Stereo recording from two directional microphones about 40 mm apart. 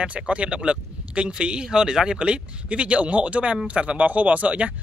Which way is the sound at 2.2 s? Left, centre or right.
Right.